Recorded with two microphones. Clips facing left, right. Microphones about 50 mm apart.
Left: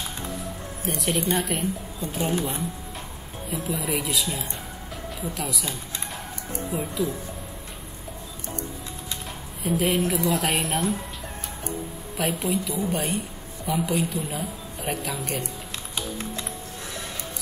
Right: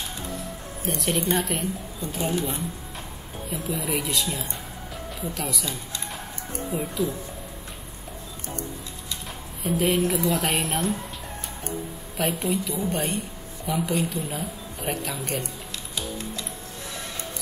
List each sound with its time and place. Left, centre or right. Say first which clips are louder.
0.8 s a woman's voice: even; centre
2.2 s speech: even; left
3.4 s a woman's voice: left 1 dB; centre
5.3 s a woman's voice: right 1 dB; centre
6.7 s a woman's voice: even; centre
9.6 s a woman's voice: right 1 dB; centre
12.2 s a woman's voice: even; centre